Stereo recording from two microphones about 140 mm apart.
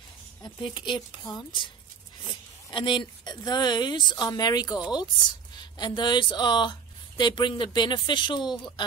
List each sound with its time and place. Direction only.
0.4 s speech: 35° left (ahead or behind)
2.7 s speech: 35° left (ahead or behind)